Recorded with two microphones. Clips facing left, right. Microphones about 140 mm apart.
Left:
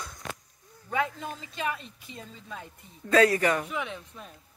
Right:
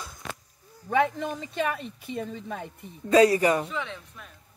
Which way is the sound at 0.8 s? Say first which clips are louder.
Right 6 dB; 65° right (ahead or behind).